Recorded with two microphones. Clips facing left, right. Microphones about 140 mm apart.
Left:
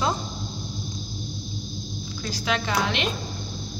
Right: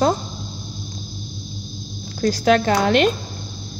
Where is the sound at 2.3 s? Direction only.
45° right (ahead or behind).